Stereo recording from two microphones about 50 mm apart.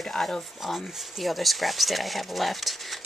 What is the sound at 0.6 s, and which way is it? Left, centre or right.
Speech, centre.